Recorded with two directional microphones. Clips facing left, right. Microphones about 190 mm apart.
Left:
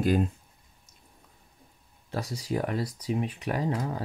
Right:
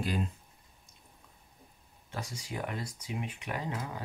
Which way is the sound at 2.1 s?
35° left (ahead or behind).